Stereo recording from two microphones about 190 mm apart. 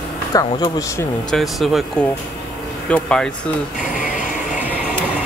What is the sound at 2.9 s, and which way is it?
Speech, 5° left (ahead or behind).